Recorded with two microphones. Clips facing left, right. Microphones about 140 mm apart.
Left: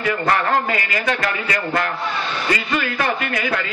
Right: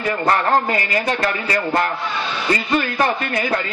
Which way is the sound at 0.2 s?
35° right (ahead or behind).